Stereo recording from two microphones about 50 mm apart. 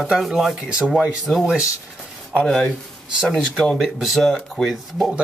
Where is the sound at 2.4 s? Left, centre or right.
Centre.